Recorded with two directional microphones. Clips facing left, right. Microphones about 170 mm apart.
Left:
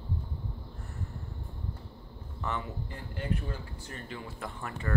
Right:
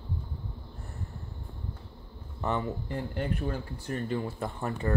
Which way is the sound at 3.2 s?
55° right (ahead or behind).